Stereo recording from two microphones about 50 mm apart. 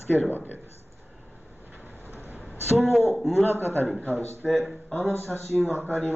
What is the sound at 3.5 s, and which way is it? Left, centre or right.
Speech, left.